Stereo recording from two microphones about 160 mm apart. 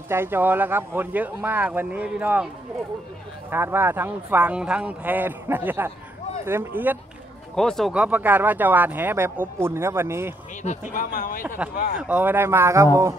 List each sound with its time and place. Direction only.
0.1 s speech: 15° right (ahead or behind)
7.5 s speech: 5° left (ahead or behind); by 10.3 s 15° right (ahead or behind)
10.9 s speech: 60° left (ahead or behind)
11.4 s speech: 10° right (ahead or behind)